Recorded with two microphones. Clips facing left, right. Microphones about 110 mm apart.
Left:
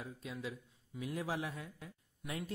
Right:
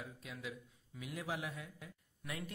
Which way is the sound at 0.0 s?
30° left (ahead or behind).